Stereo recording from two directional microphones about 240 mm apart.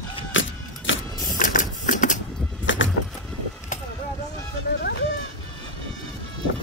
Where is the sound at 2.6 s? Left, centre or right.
Left.